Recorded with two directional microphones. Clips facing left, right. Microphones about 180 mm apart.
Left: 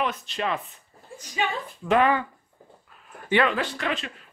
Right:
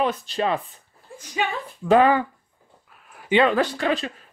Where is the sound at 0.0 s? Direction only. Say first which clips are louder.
Right 5 dB; 35° right (ahead or behind).